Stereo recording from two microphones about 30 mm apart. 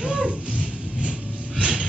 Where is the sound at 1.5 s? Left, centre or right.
Right.